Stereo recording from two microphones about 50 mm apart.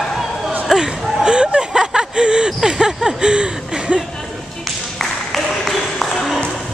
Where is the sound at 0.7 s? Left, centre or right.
Centre.